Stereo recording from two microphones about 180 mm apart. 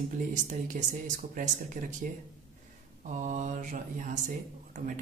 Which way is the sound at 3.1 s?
40° right (ahead or behind).